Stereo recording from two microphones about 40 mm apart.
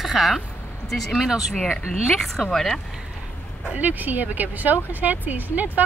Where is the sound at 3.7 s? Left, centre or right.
Right.